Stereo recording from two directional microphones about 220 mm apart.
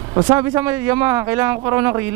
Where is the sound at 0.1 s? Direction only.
15° right (ahead or behind).